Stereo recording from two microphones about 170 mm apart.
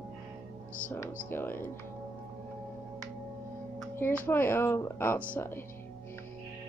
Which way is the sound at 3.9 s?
10° left (ahead or behind).